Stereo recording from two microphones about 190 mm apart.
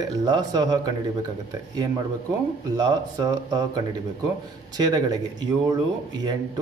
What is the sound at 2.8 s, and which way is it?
Speech, 20° right (ahead or behind).